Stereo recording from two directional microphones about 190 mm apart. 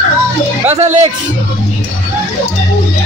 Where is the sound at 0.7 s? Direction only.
35° right (ahead or behind).